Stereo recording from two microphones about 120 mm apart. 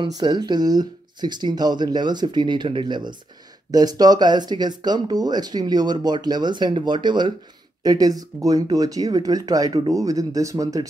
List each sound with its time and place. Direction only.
0.0 s speech: 35° right (ahead or behind)